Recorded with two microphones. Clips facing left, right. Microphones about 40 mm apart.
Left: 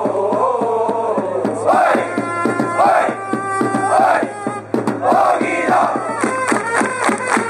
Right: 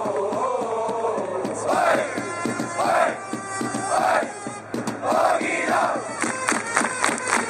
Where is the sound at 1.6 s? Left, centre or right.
Centre.